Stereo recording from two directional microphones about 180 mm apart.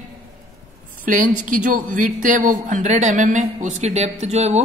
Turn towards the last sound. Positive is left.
turn(degrees=-35)  # may be behind; listen again after turning